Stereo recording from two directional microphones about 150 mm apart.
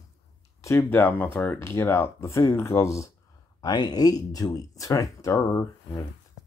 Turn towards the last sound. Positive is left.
turn(degrees=25)  # may be behind; listen again after turning